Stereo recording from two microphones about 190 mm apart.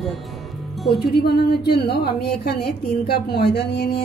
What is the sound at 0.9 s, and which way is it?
A woman's voice, 55° left (ahead or behind).